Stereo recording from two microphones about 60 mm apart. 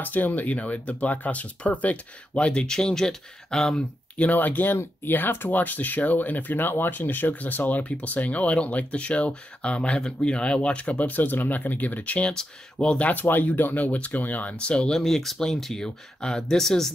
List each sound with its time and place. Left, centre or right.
0.0 s speech: left; by 3.8 s centre
4.3 s speech: left
13.1 s speech: left
15.0 s speech: centre